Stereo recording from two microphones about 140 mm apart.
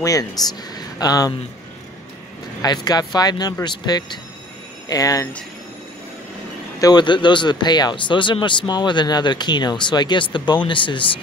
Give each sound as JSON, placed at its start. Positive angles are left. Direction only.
{"t": 0.0, "sound": "speech", "side_deg": 25}
{"t": 2.6, "sound": "speech", "side_deg": 30}
{"t": 6.8, "sound": "speech", "side_deg": 30}